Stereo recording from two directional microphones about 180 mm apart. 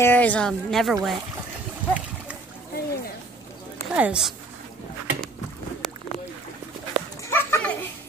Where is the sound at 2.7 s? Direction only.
60° left (ahead or behind).